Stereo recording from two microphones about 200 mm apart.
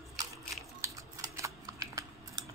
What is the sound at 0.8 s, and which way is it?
Typing, 15° right (ahead or behind).